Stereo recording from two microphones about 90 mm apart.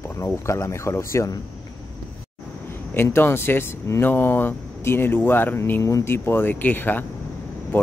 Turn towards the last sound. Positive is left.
turn(degrees=25)  # may be behind; listen again after turning